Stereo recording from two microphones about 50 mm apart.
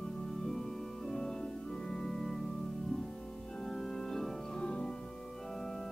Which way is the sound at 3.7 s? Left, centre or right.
Centre.